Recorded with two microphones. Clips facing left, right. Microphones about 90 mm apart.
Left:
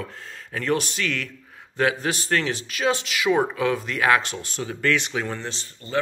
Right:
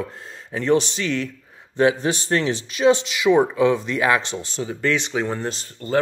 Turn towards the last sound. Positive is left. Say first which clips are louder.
# right 7 dB
turn(degrees=-45)  # may be behind; listen again after turning